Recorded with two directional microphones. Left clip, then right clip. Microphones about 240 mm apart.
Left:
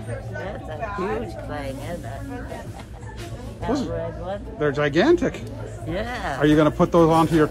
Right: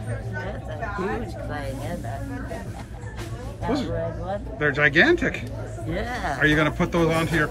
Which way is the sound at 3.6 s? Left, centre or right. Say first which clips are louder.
Left 1 dB; centre.